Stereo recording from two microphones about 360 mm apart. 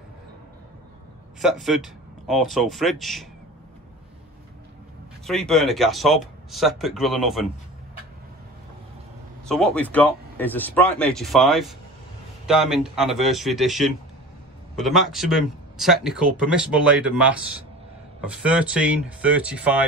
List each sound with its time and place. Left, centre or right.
1.4 s speech: centre
5.2 s speech: centre
9.5 s speech: centre